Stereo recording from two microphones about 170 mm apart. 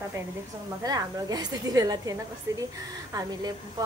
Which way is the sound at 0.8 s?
20° right (ahead or behind).